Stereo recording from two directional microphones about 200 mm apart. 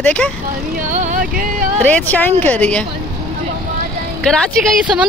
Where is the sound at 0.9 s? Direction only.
40° right (ahead or behind).